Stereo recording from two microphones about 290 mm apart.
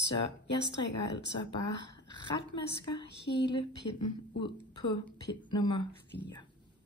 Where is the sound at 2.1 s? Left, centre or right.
Centre.